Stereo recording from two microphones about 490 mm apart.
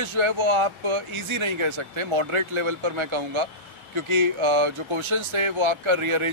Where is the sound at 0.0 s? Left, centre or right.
Right.